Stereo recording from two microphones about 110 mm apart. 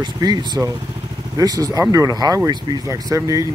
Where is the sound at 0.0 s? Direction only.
40° right (ahead or behind).